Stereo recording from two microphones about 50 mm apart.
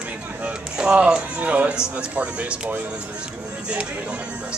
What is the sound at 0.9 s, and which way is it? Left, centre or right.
Speech, right.